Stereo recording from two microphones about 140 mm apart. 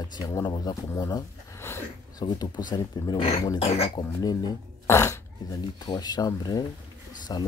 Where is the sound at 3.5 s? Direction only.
45° left (ahead or behind).